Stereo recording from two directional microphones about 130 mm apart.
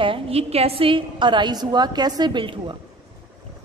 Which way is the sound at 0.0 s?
45° right (ahead or behind).